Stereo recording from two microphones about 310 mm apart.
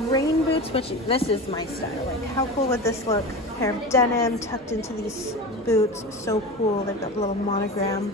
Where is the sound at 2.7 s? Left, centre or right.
Centre.